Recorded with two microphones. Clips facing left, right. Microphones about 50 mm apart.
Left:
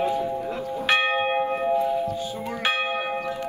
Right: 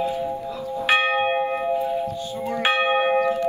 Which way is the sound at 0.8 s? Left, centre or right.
Centre.